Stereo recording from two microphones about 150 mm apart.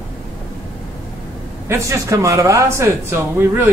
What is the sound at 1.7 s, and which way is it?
Speech, 20° right (ahead or behind).